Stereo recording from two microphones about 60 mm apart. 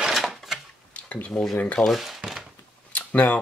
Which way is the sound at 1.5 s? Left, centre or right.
Left.